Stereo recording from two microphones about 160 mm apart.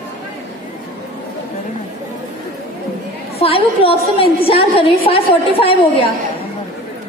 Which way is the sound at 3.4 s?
35° left (ahead or behind).